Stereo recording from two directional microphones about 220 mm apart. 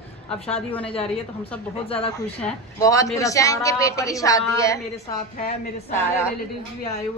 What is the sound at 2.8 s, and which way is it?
Speech, 15° left (ahead or behind).